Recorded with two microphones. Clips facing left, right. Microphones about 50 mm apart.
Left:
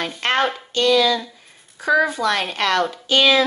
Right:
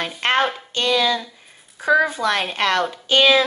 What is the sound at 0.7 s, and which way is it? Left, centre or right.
Speech, right.